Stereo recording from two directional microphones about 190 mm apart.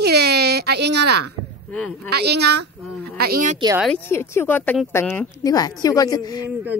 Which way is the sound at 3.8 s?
10° left (ahead or behind).